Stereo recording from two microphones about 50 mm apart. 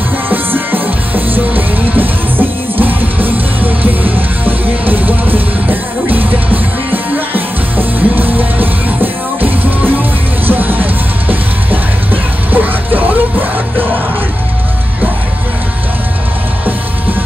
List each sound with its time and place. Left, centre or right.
0.3 s music: right